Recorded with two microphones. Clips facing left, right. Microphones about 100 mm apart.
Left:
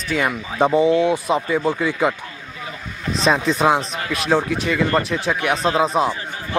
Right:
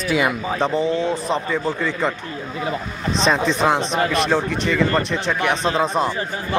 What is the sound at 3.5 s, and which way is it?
Speech, 5° left (ahead or behind).